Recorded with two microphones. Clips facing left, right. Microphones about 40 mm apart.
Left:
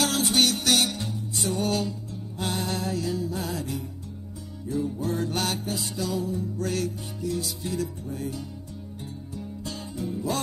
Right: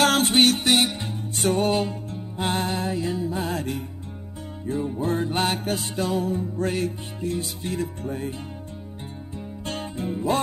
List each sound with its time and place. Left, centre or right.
0.0 s music: right
1.3 s music: right
1.7 s music: right
3.5 s music: right
5.6 s music: right
9.7 s music: right